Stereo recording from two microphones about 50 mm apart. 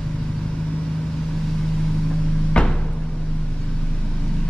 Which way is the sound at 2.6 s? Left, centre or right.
Centre.